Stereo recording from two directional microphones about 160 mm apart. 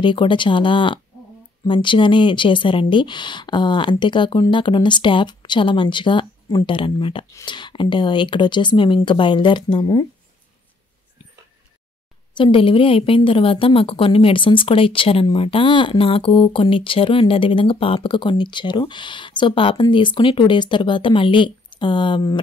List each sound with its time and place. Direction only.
0.0 s a woman's voice: 30° left (ahead or behind)
12.4 s a woman's voice: 35° left (ahead or behind)